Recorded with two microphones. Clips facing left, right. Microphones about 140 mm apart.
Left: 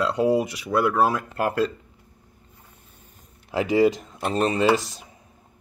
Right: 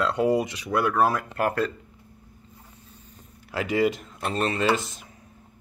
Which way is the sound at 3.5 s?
15° left (ahead or behind).